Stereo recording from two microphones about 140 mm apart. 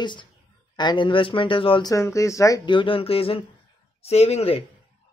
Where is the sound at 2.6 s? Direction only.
35° left (ahead or behind).